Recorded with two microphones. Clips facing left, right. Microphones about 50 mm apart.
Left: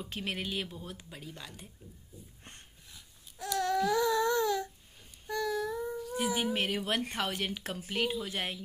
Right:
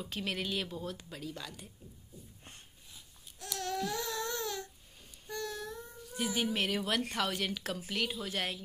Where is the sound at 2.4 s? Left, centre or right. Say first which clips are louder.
Left 2 dB; left.